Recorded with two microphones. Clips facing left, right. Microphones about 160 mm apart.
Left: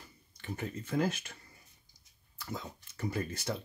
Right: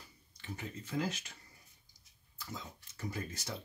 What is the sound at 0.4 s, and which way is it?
Speech, 50° left (ahead or behind).